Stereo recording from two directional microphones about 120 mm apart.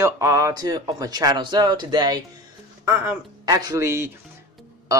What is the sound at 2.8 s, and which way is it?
Speech, 20° right (ahead or behind).